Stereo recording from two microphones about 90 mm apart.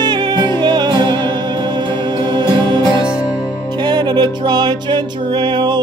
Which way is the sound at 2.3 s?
55° right (ahead or behind).